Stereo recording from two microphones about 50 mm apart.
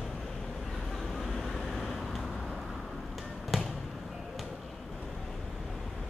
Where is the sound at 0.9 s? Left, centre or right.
Centre.